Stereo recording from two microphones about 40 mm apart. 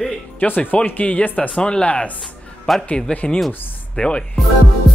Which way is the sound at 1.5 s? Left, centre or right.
Left.